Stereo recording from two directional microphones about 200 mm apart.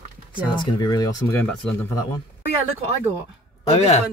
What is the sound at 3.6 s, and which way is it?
Speech, 30° left (ahead or behind).